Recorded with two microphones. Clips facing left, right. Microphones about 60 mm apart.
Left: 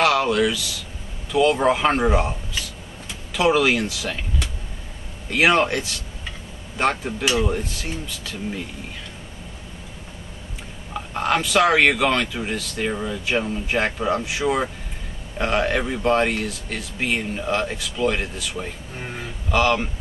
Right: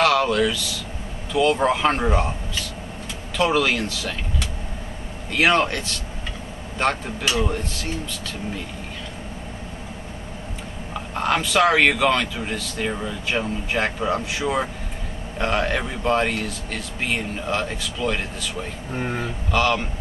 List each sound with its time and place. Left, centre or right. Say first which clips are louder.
0.0 s a man's voice: even; centre
10.9 s a man's voice: left 1 dB; centre
18.9 s speech: right 8 dB; right
19.5 s a man's voice: left 2 dB; centre